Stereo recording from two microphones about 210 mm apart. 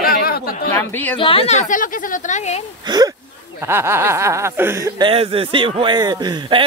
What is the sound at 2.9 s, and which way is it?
Speech, 20° right (ahead or behind).